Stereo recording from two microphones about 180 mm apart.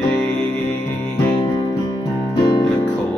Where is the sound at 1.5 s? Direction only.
25° left (ahead or behind).